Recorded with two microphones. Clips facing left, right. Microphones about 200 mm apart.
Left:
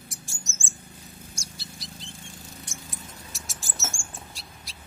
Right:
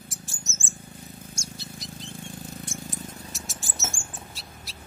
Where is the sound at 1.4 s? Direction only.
35° left (ahead or behind).